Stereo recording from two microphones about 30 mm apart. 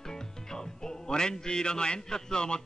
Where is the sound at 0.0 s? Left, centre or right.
Centre.